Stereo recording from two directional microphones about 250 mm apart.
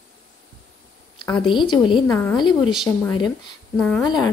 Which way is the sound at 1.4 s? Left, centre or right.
Centre.